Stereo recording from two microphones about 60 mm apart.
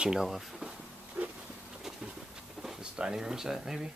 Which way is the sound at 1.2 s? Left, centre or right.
Right.